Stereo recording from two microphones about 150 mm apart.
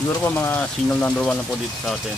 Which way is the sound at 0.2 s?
15° left (ahead or behind).